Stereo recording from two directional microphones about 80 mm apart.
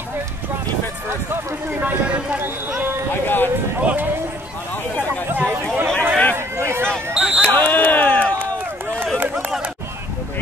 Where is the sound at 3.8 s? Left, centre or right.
Centre.